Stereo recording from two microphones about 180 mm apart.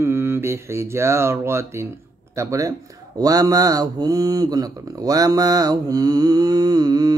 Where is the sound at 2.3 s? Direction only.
15° right (ahead or behind).